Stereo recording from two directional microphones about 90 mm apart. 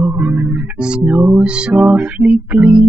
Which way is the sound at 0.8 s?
10° right (ahead or behind).